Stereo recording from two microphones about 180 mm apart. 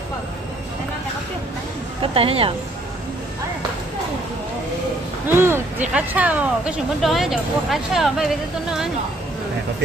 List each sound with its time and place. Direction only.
2.0 s a woman's voice: 30° right (ahead or behind)
5.3 s speech: 15° right (ahead or behind)